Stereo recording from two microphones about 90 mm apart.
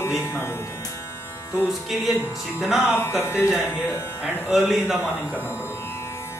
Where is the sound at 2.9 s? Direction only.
25° left (ahead or behind).